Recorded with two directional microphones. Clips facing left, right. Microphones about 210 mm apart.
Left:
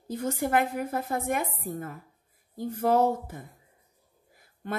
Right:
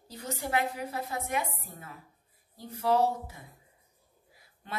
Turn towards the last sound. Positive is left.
turn(degrees=50)  # may be behind; listen again after turning